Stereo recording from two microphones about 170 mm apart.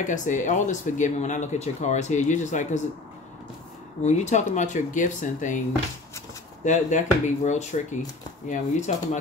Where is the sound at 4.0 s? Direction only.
45° left (ahead or behind).